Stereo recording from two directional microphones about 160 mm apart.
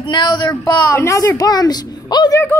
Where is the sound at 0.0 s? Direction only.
25° left (ahead or behind).